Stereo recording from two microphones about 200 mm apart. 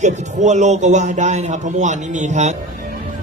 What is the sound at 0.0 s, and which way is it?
A man's voice, 35° right (ahead or behind).